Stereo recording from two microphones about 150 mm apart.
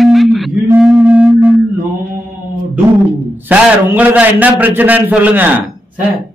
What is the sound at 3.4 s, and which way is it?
A man's voice, 10° right (ahead or behind).